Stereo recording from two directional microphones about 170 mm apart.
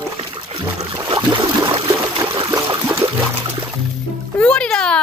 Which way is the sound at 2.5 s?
20° right (ahead or behind).